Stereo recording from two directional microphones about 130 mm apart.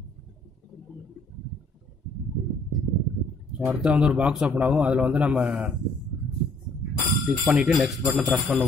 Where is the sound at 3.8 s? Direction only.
10° right (ahead or behind).